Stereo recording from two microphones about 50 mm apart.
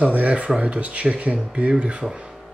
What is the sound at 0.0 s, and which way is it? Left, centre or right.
Speech, right.